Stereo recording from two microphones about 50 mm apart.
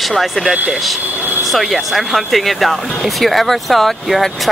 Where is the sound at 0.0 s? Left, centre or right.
Centre.